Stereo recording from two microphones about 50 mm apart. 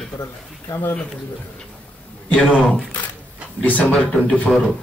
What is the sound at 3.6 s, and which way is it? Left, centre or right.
Speech, left.